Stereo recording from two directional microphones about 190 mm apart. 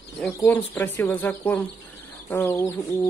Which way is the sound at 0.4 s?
10° left (ahead or behind).